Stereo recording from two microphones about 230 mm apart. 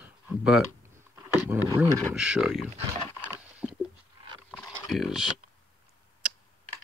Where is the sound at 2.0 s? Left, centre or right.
Centre.